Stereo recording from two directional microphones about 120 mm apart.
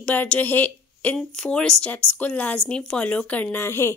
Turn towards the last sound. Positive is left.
turn(degrees=20)  # may be behind; listen again after turning